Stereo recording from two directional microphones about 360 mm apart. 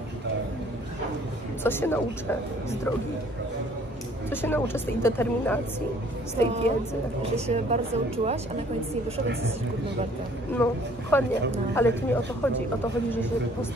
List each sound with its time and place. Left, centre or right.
1.6 s a woman's voice: centre
4.3 s a woman's voice: centre
6.4 s speech: centre
10.6 s a woman's voice: centre